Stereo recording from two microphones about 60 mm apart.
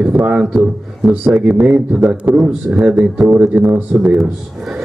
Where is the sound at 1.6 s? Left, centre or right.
Centre.